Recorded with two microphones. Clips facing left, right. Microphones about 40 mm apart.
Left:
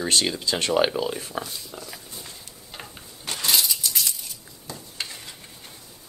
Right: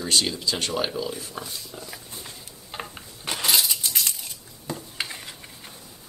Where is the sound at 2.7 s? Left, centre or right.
Centre.